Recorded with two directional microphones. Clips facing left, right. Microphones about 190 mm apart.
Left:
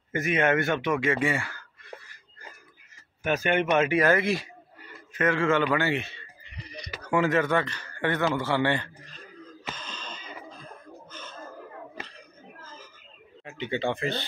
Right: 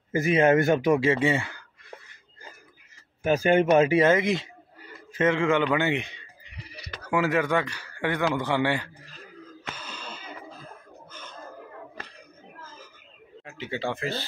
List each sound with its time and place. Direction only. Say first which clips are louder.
0.1 s a man's voice: right 4 dB; 30° right (ahead or behind)
3.3 s speech: right 4 dB; 30° right (ahead or behind)
5.7 s a sound: right 1 dB; 20° right (ahead or behind)
7.0 s a man's voice: even; 10° right (ahead or behind)
9.8 s wheeze: right 1 dB; 10° right (ahead or behind)
13.5 s speech: left 2 dB; centre (ahead or behind)